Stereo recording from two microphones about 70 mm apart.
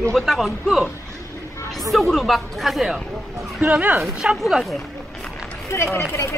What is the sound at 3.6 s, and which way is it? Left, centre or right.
Speech, centre.